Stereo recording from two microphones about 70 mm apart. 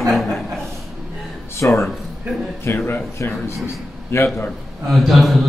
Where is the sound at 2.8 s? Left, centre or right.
Left.